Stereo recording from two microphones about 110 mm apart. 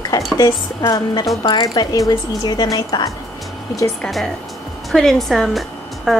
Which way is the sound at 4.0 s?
Centre (ahead or behind).